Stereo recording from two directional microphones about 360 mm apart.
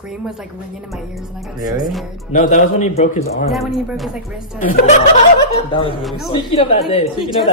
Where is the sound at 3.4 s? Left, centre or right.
Centre.